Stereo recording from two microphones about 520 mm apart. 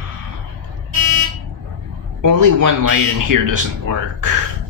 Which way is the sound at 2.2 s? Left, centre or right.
Right.